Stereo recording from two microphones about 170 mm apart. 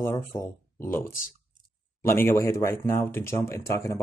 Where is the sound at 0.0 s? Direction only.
20° left (ahead or behind).